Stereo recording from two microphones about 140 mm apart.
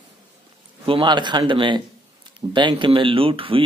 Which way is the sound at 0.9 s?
35° right (ahead or behind).